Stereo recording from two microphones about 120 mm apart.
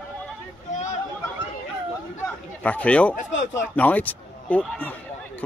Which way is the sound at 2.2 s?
10° left (ahead or behind).